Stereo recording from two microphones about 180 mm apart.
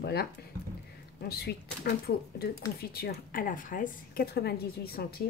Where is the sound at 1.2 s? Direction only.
60° left (ahead or behind).